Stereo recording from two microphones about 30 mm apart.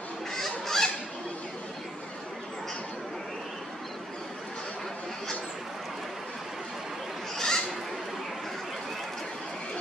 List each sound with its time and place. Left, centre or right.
0.3 s goose: centre
7.3 s goat: centre